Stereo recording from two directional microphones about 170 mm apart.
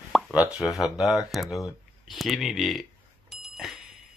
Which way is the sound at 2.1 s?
Centre (ahead or behind).